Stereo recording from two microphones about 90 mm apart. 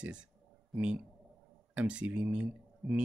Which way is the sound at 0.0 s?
10° right (ahead or behind).